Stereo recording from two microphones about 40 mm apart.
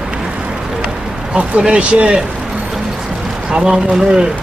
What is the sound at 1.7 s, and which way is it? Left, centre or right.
Speech, right.